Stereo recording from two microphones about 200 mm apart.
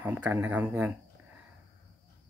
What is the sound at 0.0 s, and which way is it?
Speech, 5° right (ahead or behind).